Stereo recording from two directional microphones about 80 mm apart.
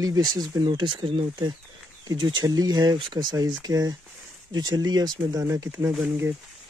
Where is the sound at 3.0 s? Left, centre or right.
Right.